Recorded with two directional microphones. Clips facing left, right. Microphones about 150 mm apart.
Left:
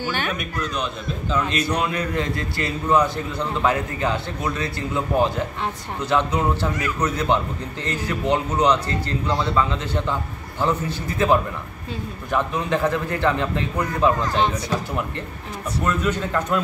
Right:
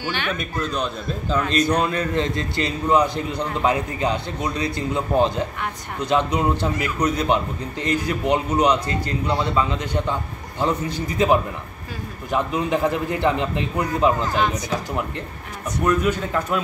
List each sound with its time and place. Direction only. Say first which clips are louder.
1.3 s a man's voice: right 3 dB; 35° right (ahead or behind); by 14.1 s 20° right (ahead or behind)
14.3 s speech: even; 30° left (ahead or behind)
15.8 s speech: right 3 dB; 15° right (ahead or behind)